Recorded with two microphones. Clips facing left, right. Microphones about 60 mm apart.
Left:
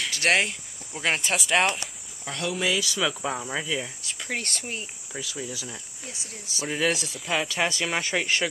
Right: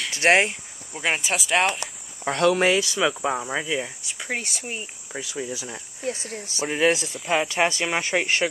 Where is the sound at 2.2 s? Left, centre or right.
Right.